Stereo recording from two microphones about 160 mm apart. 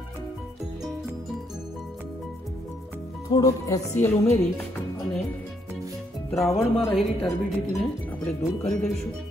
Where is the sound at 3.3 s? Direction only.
20° left (ahead or behind).